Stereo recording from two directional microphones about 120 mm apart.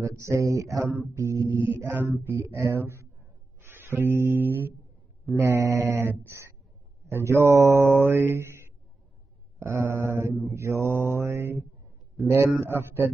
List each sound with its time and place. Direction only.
0.0 s mantra: 25° right (ahead or behind)
3.6 s music: 20° right (ahead or behind)
5.4 s mantra: 20° right (ahead or behind)
12.3 s a man's voice: 20° right (ahead or behind)